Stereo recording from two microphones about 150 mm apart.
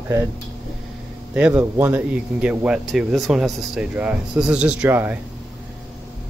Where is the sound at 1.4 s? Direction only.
10° right (ahead or behind).